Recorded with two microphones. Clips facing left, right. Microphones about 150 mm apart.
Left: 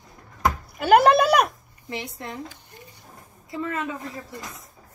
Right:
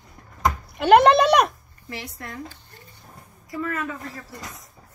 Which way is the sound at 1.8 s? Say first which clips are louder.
Left 3 dB; 20° left (ahead or behind).